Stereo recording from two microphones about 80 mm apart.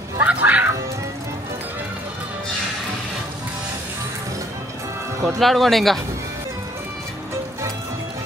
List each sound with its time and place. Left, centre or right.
0.2 s music: centre
5.4 s speech: centre